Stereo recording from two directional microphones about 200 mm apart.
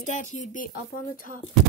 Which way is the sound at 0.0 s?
40° left (ahead or behind).